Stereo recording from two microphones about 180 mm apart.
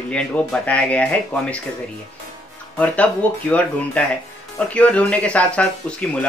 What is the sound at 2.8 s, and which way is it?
Speech, 5° left (ahead or behind).